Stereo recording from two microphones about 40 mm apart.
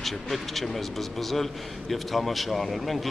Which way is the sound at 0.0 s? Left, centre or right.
Centre.